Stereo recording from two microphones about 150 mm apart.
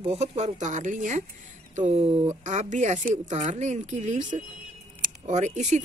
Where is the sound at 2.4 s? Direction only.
60° right (ahead or behind).